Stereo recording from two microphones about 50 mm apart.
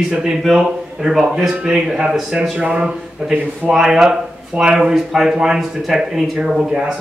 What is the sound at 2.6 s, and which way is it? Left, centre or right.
Speech, right.